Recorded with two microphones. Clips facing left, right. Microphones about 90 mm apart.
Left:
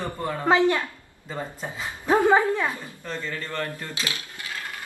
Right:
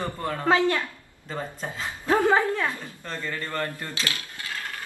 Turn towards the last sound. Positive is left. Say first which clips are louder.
# right 1 dB
turn(degrees=20)  # may be behind; listen again after turning